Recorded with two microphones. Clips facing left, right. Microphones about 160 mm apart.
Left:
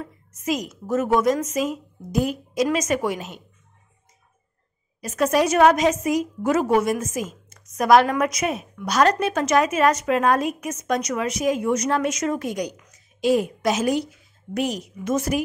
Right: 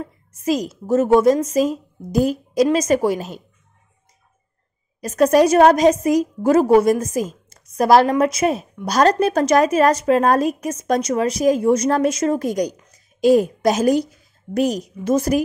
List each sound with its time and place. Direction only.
0.0 s a woman's voice: 30° right (ahead or behind)
5.0 s a woman's voice: 40° right (ahead or behind)